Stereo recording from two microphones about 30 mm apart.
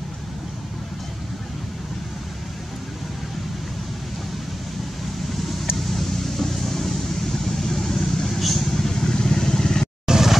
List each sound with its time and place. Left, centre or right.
5.9 s vehicle: centre
10.0 s vehicle: centre